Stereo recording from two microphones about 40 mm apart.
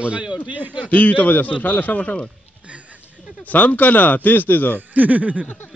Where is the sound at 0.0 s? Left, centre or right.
Right.